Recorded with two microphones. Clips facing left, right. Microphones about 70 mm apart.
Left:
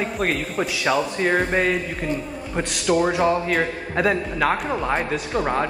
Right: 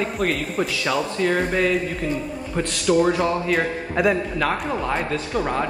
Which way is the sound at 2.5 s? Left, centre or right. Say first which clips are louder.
Right 1 dB; centre.